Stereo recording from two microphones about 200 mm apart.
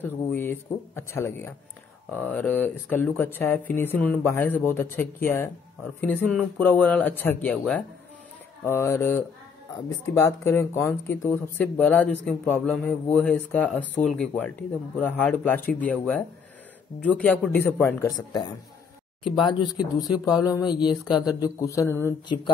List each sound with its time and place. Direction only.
0.0 s speech: 10° left (ahead or behind)
19.8 s speech: 20° left (ahead or behind)